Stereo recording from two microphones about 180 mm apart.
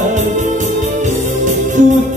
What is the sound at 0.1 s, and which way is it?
Music, 45° right (ahead or behind).